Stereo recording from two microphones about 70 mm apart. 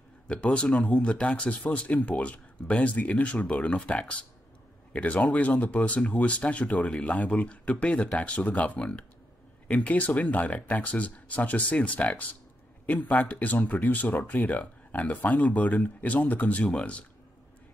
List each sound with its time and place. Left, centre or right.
0.3 s speech: centre